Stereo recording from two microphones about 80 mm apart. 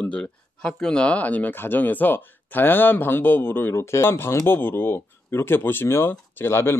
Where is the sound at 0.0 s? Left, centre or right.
Centre.